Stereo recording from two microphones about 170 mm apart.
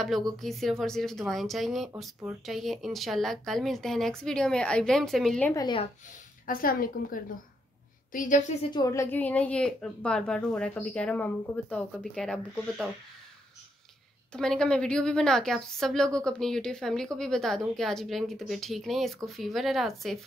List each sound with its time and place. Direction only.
0.0 s speech: centre (ahead or behind)
5.5 s speech: 20° left (ahead or behind)
6.4 s a woman's voice: 55° left (ahead or behind)
8.7 s a woman's voice: 20° left (ahead or behind); by 12.9 s centre (ahead or behind)
14.3 s speech: 5° left (ahead or behind)